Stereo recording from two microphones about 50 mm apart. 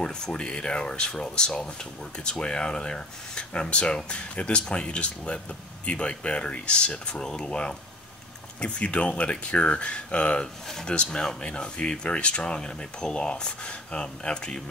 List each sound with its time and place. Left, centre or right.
0.0 s speech: centre